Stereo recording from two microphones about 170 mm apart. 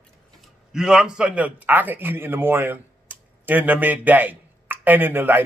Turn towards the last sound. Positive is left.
turn(degrees=-10)  # may be behind; listen again after turning